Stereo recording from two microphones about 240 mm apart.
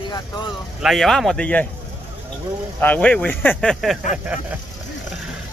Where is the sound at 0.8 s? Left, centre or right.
Centre.